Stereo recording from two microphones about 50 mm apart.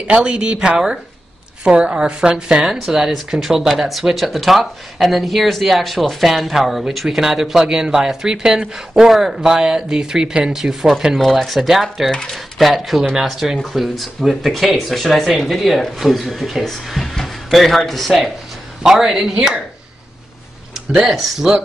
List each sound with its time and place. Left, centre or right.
0.0 s a woman's voice: right; by 12.1 s centre
12.1 s speech: centre
12.5 s speech: centre
18.8 s speech: centre
21.1 s speech: centre